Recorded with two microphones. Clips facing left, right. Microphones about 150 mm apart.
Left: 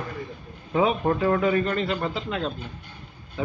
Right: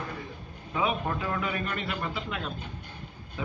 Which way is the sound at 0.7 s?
40° left (ahead or behind).